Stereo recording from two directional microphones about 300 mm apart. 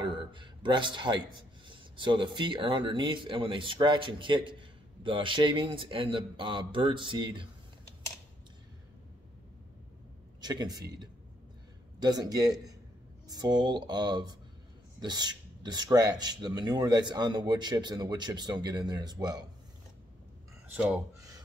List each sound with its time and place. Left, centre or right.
0.0 s speech: centre
10.4 s speech: centre
20.7 s speech: centre